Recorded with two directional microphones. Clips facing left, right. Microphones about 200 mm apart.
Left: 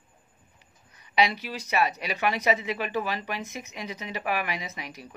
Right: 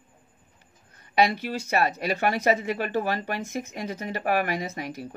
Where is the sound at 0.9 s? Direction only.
50° right (ahead or behind).